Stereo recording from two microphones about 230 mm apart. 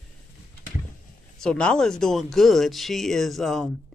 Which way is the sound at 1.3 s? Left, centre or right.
Centre.